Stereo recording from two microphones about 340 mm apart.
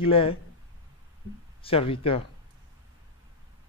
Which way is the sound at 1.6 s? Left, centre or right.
Centre.